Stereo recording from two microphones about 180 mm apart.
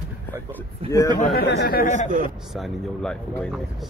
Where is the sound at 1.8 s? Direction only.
45° left (ahead or behind).